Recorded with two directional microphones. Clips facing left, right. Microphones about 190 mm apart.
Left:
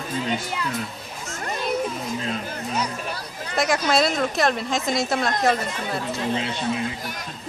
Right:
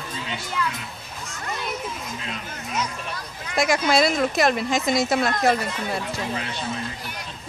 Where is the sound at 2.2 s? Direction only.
35° left (ahead or behind).